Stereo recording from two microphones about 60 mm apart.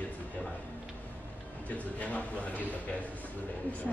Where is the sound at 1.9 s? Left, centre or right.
Left.